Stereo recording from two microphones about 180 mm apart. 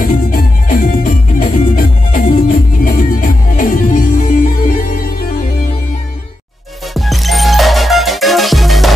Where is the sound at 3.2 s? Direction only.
50° left (ahead or behind).